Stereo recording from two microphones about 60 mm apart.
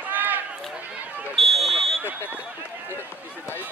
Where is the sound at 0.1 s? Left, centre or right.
Right.